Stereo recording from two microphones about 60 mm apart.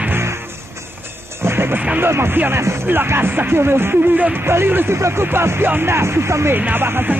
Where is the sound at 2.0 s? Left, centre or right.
Right.